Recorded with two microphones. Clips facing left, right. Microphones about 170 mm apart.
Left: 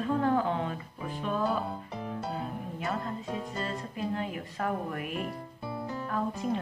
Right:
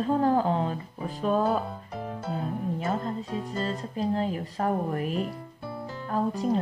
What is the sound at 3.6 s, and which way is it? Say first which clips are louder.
Speech: right 5 dB; 35° right (ahead or behind).